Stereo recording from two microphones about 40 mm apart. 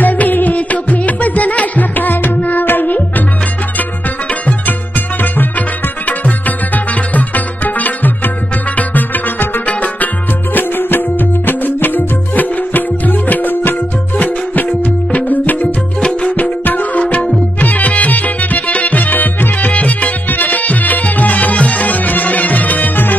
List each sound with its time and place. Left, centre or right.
0.0 s music: left
6.0 s music: left
10.5 s music: left
14.2 s music: left
17.0 s music: left
17.6 s music: left